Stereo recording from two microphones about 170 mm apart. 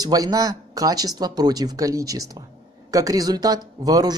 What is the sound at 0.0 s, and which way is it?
Speech, 20° right (ahead or behind).